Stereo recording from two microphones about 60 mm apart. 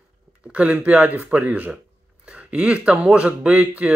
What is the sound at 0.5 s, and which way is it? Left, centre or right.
Speech, right.